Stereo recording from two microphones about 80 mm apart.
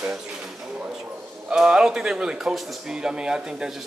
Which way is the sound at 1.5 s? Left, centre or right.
Centre.